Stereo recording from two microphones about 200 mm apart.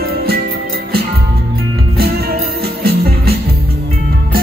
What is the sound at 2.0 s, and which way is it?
Music, 50° right (ahead or behind).